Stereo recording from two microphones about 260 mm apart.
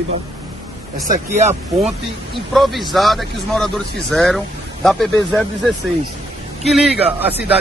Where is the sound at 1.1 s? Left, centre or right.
Right.